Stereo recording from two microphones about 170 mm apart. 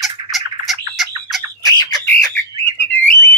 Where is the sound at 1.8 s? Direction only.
20° left (ahead or behind).